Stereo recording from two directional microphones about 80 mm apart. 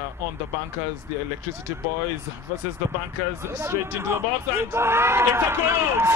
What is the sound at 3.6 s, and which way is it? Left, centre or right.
Speech, right.